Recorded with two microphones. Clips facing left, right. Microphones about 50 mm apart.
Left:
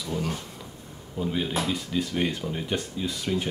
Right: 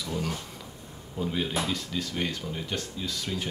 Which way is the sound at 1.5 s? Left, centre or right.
Centre.